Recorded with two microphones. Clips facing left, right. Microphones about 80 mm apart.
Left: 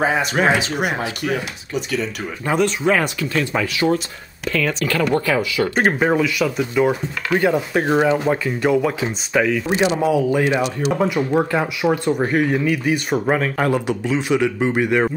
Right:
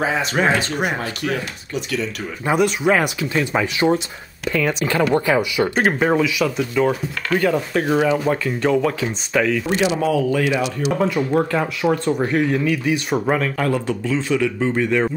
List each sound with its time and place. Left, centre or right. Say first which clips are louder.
0.0 s speech: left 1 dB; centre
2.4 s speech: right 1 dB; centre
5.8 s speech: left 1 dB; centre
6.6 s a man's voice: left 2 dB; centre
12.8 s speech: even; centre
13.6 s a man's voice: left 1 dB; centre